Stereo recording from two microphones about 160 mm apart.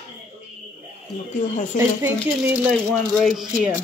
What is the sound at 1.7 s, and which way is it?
Speech, 10° right (ahead or behind).